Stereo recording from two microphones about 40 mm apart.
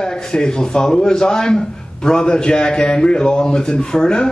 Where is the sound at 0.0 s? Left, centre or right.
Centre.